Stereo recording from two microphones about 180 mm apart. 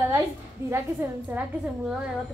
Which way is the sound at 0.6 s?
15° right (ahead or behind).